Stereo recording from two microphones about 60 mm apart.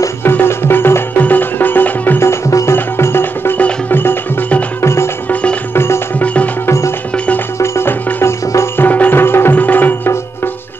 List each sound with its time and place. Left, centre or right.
0.2 s music: left
2.5 s music: left
4.8 s music: left
5.3 s music: left
6.6 s music: left
8.7 s music: left